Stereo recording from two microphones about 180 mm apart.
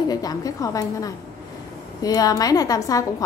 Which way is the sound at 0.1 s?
20° left (ahead or behind).